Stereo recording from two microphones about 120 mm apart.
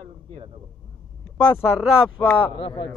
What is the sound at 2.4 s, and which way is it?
Speech, 45° left (ahead or behind).